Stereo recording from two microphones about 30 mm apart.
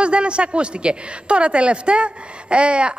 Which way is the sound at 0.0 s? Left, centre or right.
Right.